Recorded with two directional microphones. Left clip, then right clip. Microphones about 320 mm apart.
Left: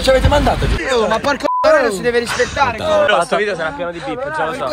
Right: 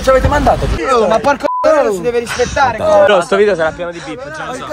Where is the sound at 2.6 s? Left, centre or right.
Right.